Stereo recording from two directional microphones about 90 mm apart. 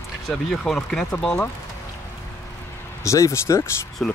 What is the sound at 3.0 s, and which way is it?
Speech, 35° left (ahead or behind).